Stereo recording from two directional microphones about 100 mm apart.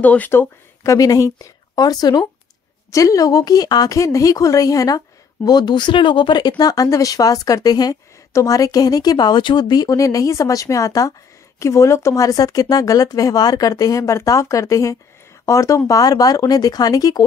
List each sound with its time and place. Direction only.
0.0 s speech: 15° left (ahead or behind)
0.9 s a woman's voice: 35° left (ahead or behind); by 6.5 s 50° left (ahead or behind)
6.6 s a woman's voice: 35° left (ahead or behind)